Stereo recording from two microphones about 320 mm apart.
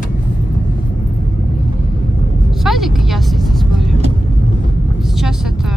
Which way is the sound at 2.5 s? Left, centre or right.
Centre.